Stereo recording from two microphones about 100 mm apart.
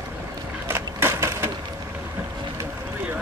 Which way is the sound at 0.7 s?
25° right (ahead or behind).